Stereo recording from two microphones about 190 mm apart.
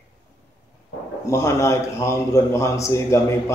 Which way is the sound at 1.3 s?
15° left (ahead or behind).